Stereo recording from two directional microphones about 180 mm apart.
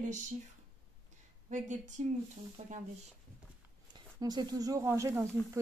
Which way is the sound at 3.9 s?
25° right (ahead or behind).